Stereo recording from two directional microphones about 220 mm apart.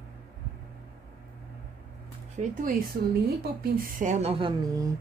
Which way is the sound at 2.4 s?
35° right (ahead or behind).